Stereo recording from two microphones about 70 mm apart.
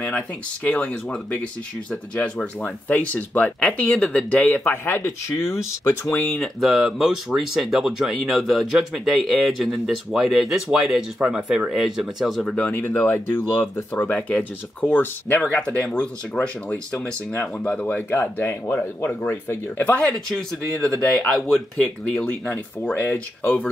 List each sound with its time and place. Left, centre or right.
0.7 s speech: centre
4.5 s speech: left
6.4 s speech: centre
12.5 s speech: left
20.2 s speech: centre
22.9 s speech: left